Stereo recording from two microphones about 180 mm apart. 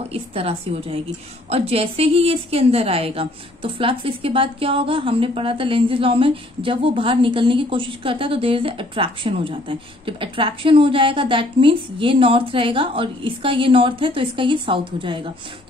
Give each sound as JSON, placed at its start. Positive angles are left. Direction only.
{"t": 0.1, "sound": "a woman's voice", "side_deg": -35}